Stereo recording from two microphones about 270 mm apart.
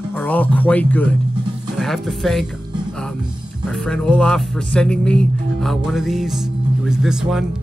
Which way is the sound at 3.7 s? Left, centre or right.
Centre.